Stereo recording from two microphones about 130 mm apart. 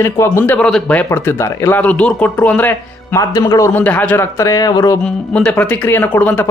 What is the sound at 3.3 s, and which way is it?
A man's voice, 25° left (ahead or behind).